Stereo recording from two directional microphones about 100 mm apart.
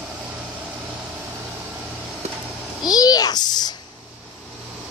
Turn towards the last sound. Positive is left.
turn(degrees=45)  # may be behind; listen again after turning